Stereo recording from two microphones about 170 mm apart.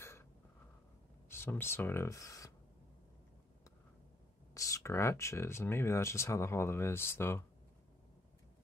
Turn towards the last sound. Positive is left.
turn(degrees=15)  # may be behind; listen again after turning